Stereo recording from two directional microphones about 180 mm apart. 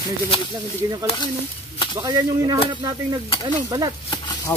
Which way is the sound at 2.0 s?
20° right (ahead or behind).